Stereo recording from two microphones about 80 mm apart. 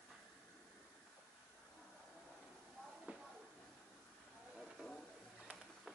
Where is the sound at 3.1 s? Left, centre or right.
Centre.